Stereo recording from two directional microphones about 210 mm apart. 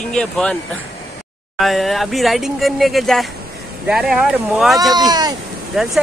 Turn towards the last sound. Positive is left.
turn(degrees=0)  # may be behind; listen again after turning